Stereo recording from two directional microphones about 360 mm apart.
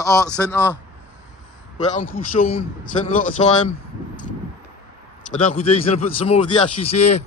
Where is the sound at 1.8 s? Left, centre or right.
Left.